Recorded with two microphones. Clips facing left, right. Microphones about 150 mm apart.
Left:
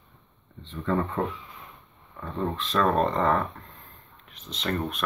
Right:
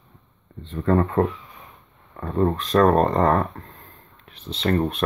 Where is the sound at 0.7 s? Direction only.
55° right (ahead or behind).